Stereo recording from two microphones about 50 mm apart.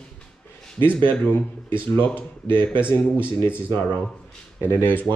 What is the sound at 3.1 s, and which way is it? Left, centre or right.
Speech, right.